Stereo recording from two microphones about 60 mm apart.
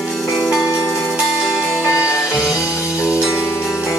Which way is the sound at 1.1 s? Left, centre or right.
Centre.